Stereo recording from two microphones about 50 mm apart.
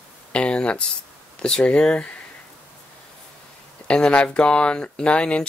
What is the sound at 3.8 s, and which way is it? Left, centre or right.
Speech, centre.